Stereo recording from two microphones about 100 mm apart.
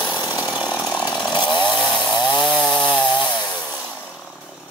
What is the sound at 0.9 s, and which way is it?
Chainsaw, 10° left (ahead or behind).